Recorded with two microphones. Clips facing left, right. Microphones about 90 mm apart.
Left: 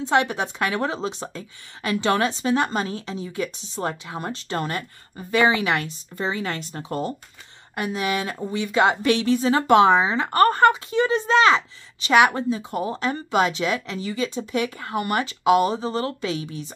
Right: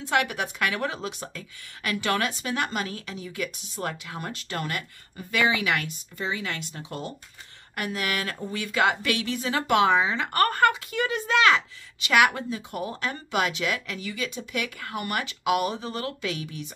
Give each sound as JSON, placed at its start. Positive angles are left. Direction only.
{"t": 0.1, "sound": "speech", "side_deg": 30}
{"t": 7.7, "sound": "speech", "side_deg": 20}